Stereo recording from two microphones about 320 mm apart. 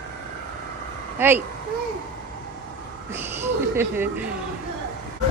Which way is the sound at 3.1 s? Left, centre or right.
Centre.